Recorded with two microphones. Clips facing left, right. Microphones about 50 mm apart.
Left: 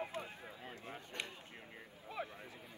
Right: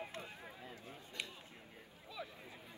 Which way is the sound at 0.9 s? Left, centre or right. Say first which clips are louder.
Left 2 dB; left.